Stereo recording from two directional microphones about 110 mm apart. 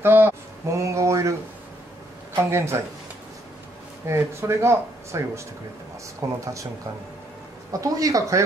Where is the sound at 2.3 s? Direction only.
25° right (ahead or behind).